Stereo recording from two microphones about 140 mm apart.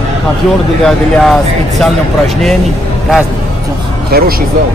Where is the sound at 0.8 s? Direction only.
5° left (ahead or behind).